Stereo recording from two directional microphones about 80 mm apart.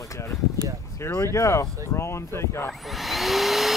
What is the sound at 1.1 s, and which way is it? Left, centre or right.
Speech, left.